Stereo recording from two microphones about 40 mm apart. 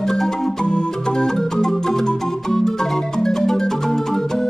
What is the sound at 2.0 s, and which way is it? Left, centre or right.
Marimba, centre.